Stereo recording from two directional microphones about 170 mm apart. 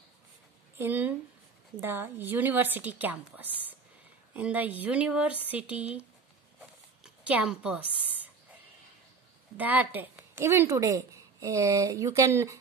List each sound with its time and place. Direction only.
0.7 s a woman's voice: 10° right (ahead or behind)
9.6 s a woman's voice: 10° right (ahead or behind)